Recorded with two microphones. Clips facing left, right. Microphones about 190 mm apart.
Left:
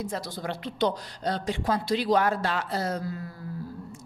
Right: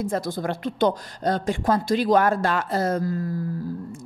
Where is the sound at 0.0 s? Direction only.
50° right (ahead or behind).